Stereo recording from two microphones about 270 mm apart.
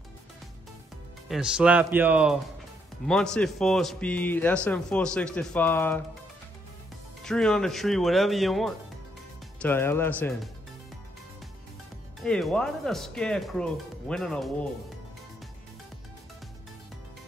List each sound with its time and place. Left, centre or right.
1.3 s speech: centre
7.2 s speech: centre
12.2 s speech: centre